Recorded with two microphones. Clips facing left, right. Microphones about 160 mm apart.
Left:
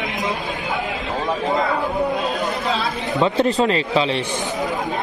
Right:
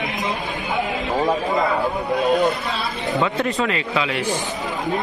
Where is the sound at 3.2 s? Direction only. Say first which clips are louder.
Left 5 dB; 30° left (ahead or behind).